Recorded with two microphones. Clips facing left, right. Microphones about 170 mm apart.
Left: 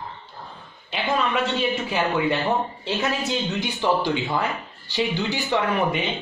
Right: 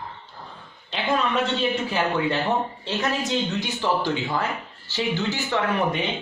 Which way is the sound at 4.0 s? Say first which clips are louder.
Left 1 dB; 15° left (ahead or behind).